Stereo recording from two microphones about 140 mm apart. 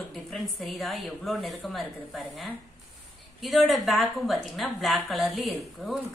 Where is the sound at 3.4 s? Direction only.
Centre (ahead or behind).